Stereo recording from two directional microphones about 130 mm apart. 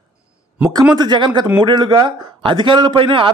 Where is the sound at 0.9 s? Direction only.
35° right (ahead or behind).